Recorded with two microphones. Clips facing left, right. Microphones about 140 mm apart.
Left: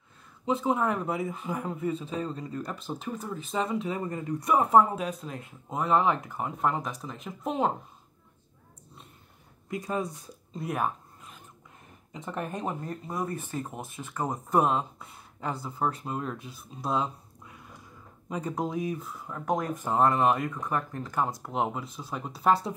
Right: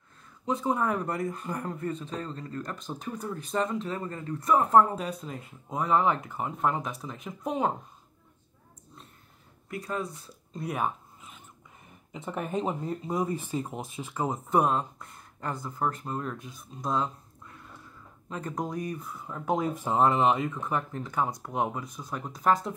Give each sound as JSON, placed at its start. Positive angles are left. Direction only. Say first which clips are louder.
{"t": 0.5, "sound": "speech", "louder": "left 1 dB", "side_deg": 5}
{"t": 9.7, "sound": "speech", "louder": "left 2 dB", "side_deg": 20}
{"t": 10.5, "sound": "zipper", "louder": "even", "side_deg": 0}
{"t": 12.1, "sound": "speech", "louder": "right 2 dB", "side_deg": -5}
{"t": 14.1, "sound": "speech", "louder": "even", "side_deg": -5}